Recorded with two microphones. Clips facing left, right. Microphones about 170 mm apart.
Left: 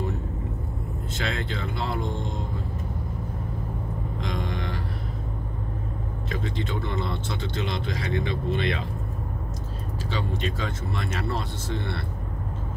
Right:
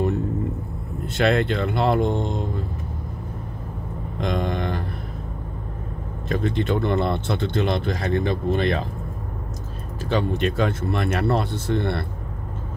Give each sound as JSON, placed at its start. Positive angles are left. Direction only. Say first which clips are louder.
{"t": 1.0, "sound": "speech", "louder": "right 12 dB", "side_deg": -65}
{"t": 4.2, "sound": "a sound", "louder": "right 9 dB", "side_deg": -60}
{"t": 6.2, "sound": "speech", "louder": "right 8 dB", "side_deg": -60}
{"t": 10.0, "sound": "speech", "louder": "right 8 dB", "side_deg": -60}